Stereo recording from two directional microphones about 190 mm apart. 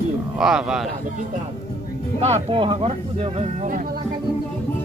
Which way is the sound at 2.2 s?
30° right (ahead or behind).